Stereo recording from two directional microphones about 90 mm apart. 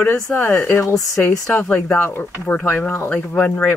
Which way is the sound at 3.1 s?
15° left (ahead or behind).